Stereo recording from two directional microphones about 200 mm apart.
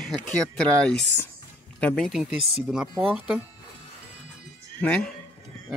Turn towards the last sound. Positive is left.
turn(degrees=5)  # may be behind; listen again after turning